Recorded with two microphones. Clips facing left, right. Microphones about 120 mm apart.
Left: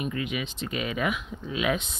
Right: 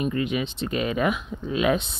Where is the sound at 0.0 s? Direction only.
35° right (ahead or behind).